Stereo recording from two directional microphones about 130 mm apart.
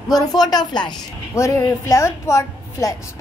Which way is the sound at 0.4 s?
30° left (ahead or behind).